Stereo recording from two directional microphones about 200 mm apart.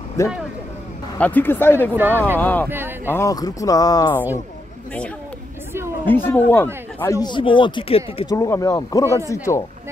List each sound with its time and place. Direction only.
0.2 s speech: 15° left (ahead or behind)
2.0 s speech: 10° right (ahead or behind)
2.3 s speech: 10° left (ahead or behind)
6.0 s speech: 10° left (ahead or behind); by 8.4 s 25° left (ahead or behind)
8.4 s speech: 15° left (ahead or behind)